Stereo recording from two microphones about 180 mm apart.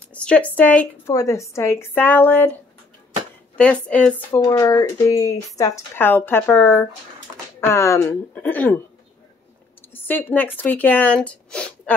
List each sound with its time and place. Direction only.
0.1 s speech: 5° left (ahead or behind)
3.5 s speech: 5° left (ahead or behind)
4.4 s speech: 20° left (ahead or behind)
9.9 s speech: 10° left (ahead or behind)